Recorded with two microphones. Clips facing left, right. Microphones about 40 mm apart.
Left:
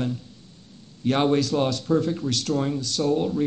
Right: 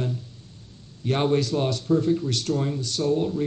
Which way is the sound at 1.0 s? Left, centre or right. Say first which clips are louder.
Left 3 dB; centre.